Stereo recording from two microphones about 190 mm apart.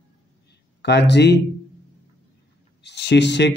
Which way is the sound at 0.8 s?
65° left (ahead or behind).